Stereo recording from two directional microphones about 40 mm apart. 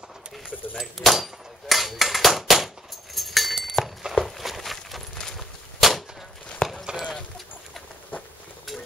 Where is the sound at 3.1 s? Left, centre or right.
Centre.